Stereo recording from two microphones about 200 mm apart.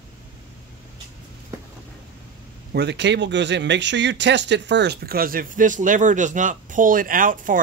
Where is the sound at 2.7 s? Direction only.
55° right (ahead or behind).